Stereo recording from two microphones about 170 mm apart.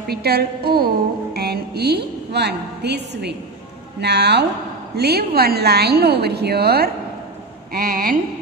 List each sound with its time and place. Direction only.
0.1 s music: 70° right (ahead or behind)
4.0 s a woman's voice: 75° right (ahead or behind); by 8.2 s 60° right (ahead or behind)